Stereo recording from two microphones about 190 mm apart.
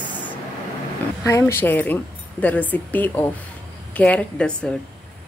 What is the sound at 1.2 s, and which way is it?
A woman's voice, 15° left (ahead or behind).